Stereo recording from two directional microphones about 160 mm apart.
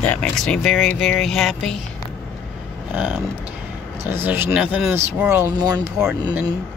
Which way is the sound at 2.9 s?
10° right (ahead or behind).